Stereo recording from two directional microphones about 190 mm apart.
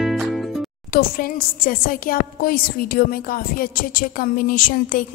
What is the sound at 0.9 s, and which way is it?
A woman's voice, 50° left (ahead or behind).